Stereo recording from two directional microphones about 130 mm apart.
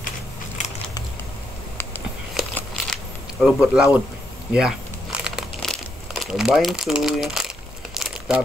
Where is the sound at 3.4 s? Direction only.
5° right (ahead or behind).